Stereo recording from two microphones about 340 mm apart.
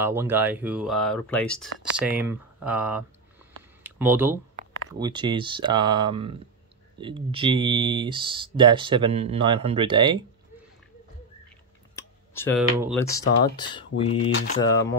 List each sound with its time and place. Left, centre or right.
0.0 s speech: centre
11.9 s a sound: centre
13.1 s speech: centre
14.3 s mantra: left
14.6 s speech: centre